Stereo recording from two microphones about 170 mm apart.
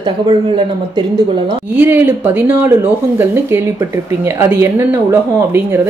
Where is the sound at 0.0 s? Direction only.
30° right (ahead or behind).